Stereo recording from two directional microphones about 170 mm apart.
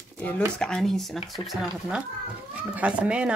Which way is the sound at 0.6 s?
Centre (ahead or behind).